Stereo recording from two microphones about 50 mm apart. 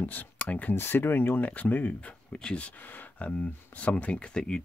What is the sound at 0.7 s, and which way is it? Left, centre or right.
Speech, left.